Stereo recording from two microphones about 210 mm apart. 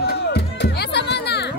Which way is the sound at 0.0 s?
50° left (ahead or behind).